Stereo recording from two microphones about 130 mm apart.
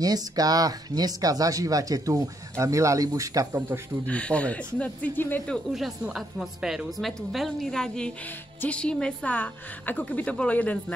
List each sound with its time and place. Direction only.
0.0 s speech: 30° right (ahead or behind)
3.5 s speech: 15° right (ahead or behind)
4.0 s a woman's voice: 10° left (ahead or behind)
5.7 s a woman's voice: centre (ahead or behind)